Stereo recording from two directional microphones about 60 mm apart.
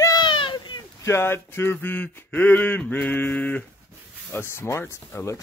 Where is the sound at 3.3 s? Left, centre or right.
Left.